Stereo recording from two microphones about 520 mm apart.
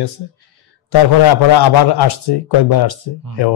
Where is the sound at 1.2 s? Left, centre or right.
Left.